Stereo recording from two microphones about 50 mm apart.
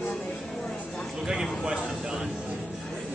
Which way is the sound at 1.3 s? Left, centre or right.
Centre.